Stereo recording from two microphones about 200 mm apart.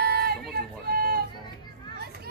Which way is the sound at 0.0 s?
50° right (ahead or behind).